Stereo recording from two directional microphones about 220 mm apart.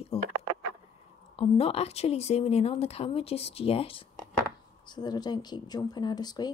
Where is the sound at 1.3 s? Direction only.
25° left (ahead or behind).